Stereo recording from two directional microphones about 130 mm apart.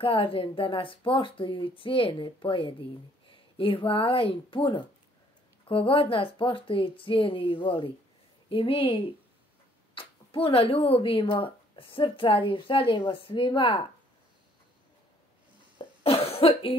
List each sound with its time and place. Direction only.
0.0 s a woman's voice: 45° left (ahead or behind)
15.8 s cough: 45° left (ahead or behind)